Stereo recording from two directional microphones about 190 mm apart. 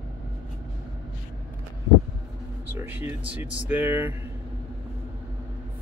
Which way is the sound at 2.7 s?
10° right (ahead or behind).